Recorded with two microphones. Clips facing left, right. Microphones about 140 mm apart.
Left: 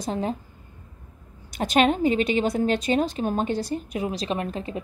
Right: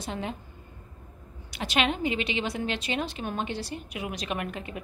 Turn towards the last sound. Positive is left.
turn(degrees=30)  # may be behind; listen again after turning